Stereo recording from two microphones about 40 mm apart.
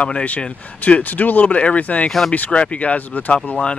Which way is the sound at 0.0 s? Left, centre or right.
Left.